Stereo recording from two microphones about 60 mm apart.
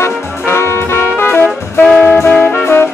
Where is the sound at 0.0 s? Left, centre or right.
Left.